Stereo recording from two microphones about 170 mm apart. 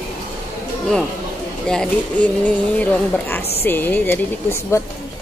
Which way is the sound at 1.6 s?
5° left (ahead or behind).